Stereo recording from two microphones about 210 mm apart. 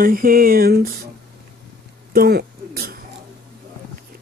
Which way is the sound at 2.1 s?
45° right (ahead or behind).